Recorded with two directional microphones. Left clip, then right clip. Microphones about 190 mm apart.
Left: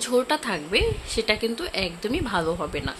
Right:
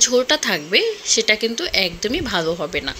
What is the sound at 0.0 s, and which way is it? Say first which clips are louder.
A woman's voice: right 6 dB; 10° right (ahead or behind).